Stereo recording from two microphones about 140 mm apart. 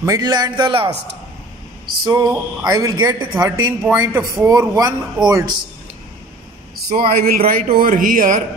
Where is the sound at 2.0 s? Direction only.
30° right (ahead or behind).